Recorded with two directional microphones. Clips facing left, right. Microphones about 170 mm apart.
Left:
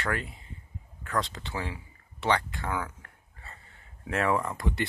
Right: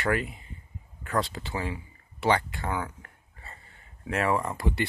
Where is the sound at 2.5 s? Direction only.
15° right (ahead or behind).